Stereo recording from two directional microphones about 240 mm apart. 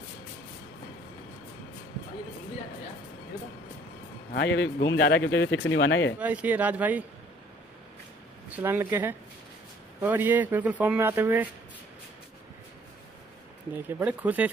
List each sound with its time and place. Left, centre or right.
4.3 s speech: left
6.1 s a man's voice: centre
8.5 s a man's voice: centre
13.8 s a man's voice: centre